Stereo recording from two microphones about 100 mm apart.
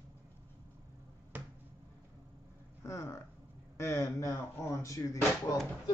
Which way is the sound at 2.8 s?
30° left (ahead or behind).